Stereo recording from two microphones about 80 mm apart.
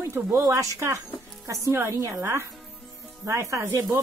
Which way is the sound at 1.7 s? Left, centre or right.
Right.